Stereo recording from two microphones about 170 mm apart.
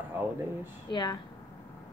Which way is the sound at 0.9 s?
25° left (ahead or behind).